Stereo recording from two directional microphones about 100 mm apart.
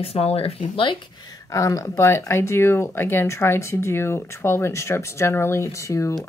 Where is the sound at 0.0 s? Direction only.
80° left; by 0.9 s 65° left (ahead or behind).